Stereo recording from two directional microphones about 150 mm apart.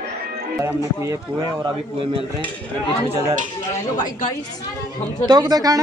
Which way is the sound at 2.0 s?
40° right (ahead or behind).